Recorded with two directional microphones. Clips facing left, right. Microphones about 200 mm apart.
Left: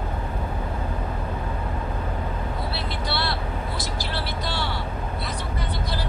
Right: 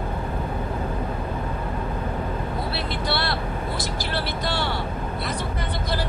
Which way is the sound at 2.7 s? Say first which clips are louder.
Right 3 dB; 55° right (ahead or behind).